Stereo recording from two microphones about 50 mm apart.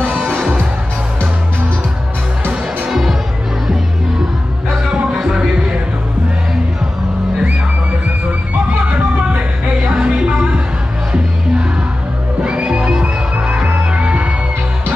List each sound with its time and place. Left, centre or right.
2.9 s music: centre
4.6 s music: centre
9.8 s music: right
12.4 s music: right